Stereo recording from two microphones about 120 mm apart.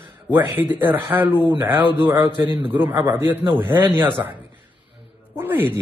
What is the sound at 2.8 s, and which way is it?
Speech, 15° right (ahead or behind).